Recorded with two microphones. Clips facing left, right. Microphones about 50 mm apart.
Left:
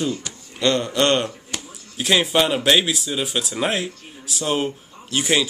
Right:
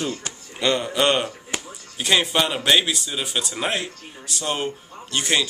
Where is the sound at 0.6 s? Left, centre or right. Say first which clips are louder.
Left 2 dB; centre.